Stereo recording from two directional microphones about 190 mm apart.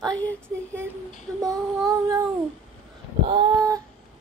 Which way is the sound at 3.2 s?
25° right (ahead or behind).